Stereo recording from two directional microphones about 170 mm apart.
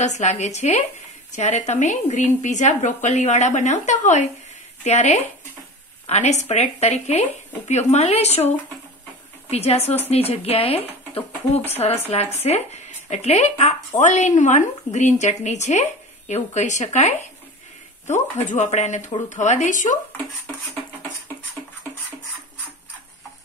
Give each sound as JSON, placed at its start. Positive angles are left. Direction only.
{"t": 0.0, "sound": "speech", "side_deg": 45}
{"t": 9.5, "sound": "speech", "side_deg": 40}
{"t": 11.8, "sound": "speech", "side_deg": 35}